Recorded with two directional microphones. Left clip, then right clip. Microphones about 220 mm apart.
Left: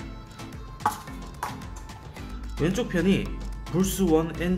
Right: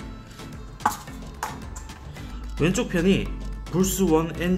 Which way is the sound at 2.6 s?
10° right (ahead or behind).